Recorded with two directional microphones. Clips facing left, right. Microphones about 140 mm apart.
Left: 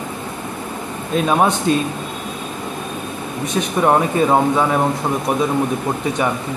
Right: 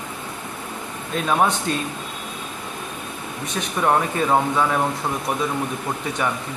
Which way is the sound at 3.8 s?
20° left (ahead or behind).